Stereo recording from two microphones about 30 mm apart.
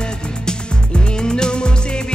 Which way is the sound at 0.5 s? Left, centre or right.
Left.